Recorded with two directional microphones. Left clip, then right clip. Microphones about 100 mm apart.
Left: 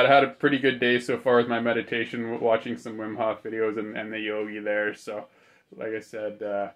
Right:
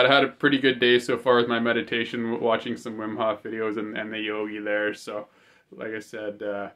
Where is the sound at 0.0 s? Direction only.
20° right (ahead or behind).